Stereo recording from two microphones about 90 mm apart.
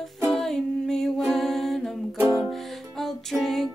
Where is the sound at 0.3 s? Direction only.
5° left (ahead or behind).